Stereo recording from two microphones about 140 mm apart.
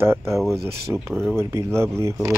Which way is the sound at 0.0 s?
20° right (ahead or behind).